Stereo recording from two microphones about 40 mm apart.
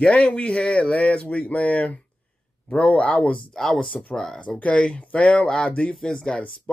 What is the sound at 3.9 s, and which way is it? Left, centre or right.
Speech, left.